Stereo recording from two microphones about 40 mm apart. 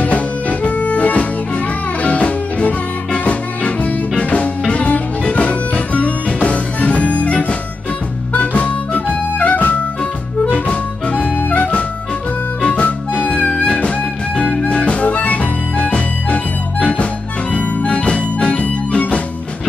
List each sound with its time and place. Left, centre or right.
0.0 s music: left
8.3 s harmonica: left
11.5 s music: left